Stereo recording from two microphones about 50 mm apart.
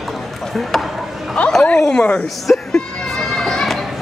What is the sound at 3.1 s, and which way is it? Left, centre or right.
Children playing, centre.